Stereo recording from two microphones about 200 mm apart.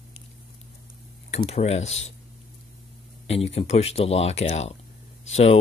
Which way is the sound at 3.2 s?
30° left (ahead or behind).